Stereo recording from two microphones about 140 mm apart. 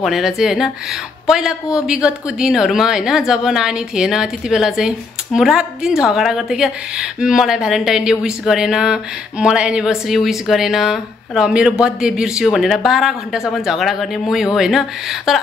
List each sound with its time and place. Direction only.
0.0 s a woman's voice: 5° right (ahead or behind)